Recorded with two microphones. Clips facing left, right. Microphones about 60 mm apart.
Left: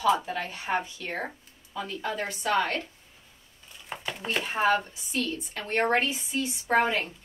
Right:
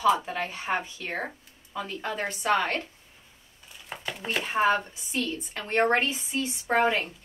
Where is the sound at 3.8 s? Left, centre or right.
Centre.